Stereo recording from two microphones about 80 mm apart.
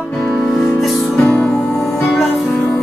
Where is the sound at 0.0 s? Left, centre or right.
Centre.